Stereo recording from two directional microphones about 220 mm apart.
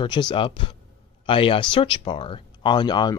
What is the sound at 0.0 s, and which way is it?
Speech, 20° left (ahead or behind).